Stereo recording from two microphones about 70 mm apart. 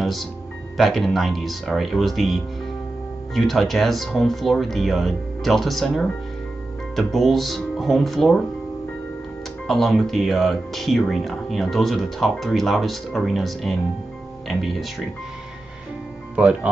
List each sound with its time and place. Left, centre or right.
0.0 s speech: centre
9.7 s speech: centre
16.3 s speech: centre